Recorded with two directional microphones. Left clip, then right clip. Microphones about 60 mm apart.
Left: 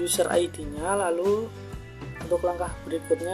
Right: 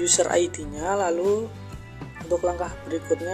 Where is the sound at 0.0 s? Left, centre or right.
Right.